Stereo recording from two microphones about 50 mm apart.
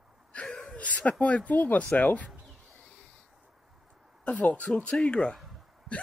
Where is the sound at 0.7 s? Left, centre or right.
Left.